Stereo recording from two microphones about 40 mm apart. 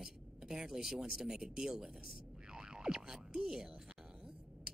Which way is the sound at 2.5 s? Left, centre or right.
Centre.